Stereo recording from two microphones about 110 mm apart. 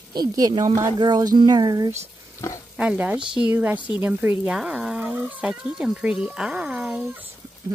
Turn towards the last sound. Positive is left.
turn(degrees=-10)  # may be behind; listen again after turning